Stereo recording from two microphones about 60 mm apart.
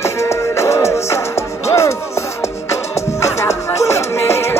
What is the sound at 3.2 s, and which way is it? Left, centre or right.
Music, left.